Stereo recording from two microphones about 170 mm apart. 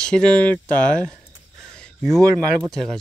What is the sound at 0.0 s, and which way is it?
Speech, 5° left (ahead or behind).